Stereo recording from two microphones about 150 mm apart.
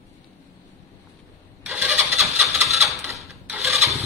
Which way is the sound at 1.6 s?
10° right (ahead or behind).